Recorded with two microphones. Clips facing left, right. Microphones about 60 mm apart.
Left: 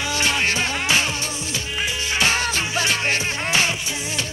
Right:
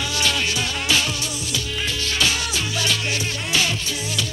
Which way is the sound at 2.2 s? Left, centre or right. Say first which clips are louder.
Left 3 dB; left.